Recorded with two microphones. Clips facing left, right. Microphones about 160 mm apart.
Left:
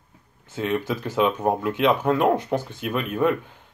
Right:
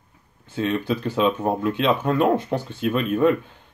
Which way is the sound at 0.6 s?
15° left (ahead or behind).